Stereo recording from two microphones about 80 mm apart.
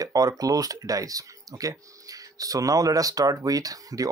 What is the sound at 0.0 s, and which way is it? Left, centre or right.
Speech, right.